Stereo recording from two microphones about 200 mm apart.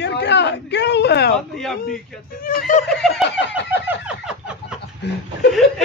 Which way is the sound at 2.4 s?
40° left (ahead or behind).